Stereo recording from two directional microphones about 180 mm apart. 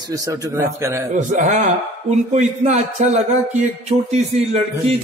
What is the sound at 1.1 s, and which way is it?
Speech, 45° right (ahead or behind).